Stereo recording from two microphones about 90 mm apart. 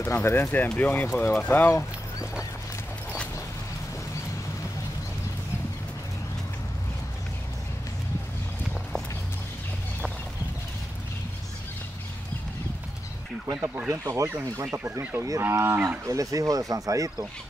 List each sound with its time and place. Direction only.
0.0 s speech: 30° left (ahead or behind)
13.8 s speech: 35° right (ahead or behind)
14.7 s speech: 15° right (ahead or behind)
15.1 s cattle: 35° right (ahead or behind)
16.1 s speech: 40° right (ahead or behind)